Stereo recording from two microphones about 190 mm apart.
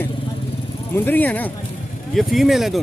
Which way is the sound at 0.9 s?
10° left (ahead or behind).